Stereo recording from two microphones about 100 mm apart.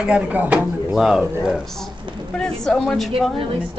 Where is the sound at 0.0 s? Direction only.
15° right (ahead or behind).